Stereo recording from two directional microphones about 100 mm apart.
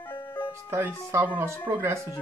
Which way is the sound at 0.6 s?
25° right (ahead or behind).